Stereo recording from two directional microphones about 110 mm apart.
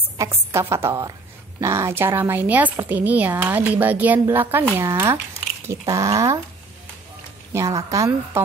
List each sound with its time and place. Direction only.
0.2 s a woman's voice: 25° right (ahead or behind)
7.5 s a woman's voice: 30° right (ahead or behind)